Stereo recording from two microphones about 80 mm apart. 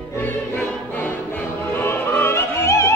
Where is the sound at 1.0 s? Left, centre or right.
Left.